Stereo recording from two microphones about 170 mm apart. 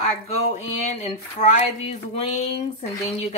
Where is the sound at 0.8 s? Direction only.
40° left (ahead or behind).